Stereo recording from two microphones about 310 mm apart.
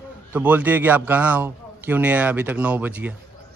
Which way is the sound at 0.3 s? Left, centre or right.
Centre.